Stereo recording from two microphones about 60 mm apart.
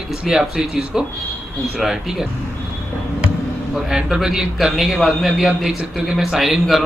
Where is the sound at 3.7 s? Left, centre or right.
Centre.